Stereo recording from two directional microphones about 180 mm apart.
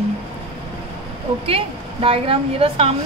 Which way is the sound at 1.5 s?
30° right (ahead or behind).